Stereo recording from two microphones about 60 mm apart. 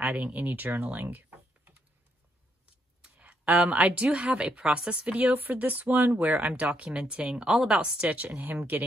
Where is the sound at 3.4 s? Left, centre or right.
Right.